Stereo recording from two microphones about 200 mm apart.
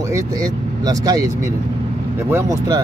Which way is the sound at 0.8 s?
20° right (ahead or behind).